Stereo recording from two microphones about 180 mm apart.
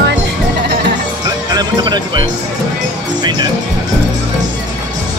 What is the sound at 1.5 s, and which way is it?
Speech, 25° right (ahead or behind).